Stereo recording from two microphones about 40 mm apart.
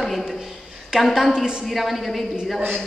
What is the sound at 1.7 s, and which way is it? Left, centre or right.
Speech, centre.